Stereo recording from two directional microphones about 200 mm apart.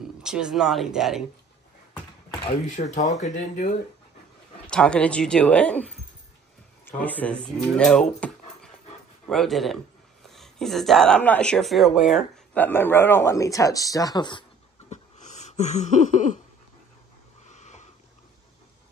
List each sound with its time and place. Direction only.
0.2 s speech: 5° right (ahead or behind)
2.6 s speech: 35° left (ahead or behind)
4.6 s speech: 5° left (ahead or behind)
12.5 s speech: 10° left (ahead or behind)
14.9 s a sound: 35° left (ahead or behind)
17.5 s a sound: 35° left (ahead or behind)